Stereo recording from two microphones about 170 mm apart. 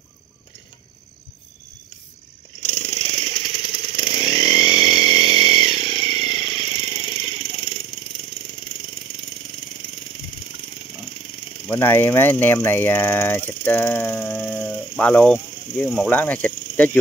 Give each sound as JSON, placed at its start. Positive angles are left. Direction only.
{"t": 2.6, "sound": "a sound", "side_deg": 40}
{"t": 3.9, "sound": "chainsaw", "side_deg": 25}
{"t": 11.6, "sound": "speech", "side_deg": 10}